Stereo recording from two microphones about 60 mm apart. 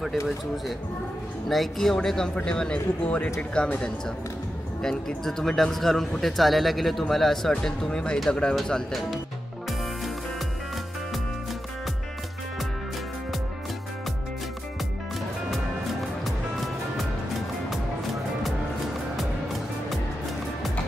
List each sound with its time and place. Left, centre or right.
1.5 s a man's voice: centre
4.8 s a man's voice: centre
15.5 s music: centre